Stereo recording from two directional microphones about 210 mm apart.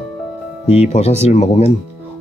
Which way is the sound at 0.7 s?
30° left (ahead or behind).